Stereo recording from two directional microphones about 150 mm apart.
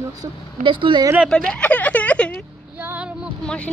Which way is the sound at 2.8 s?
10° right (ahead or behind).